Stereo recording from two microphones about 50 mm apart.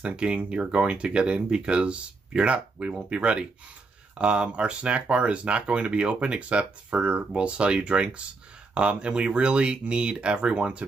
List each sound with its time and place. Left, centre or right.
0.0 s speech: right